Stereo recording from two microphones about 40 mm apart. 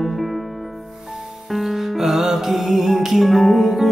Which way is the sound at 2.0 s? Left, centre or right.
Centre.